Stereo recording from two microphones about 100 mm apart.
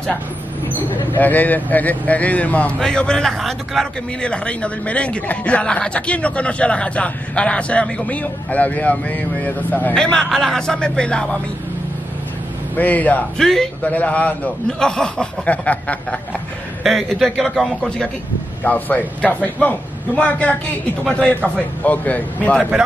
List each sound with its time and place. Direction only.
1.1 s speech: 15° left (ahead or behind)
12.7 s speech: 15° left (ahead or behind)
13.4 s a man's voice: 5° left (ahead or behind)
16.8 s a man's voice: 5° left (ahead or behind)
18.6 s speech: 15° left (ahead or behind)